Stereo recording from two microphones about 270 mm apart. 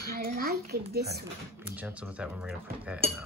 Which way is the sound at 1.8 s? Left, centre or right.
Centre.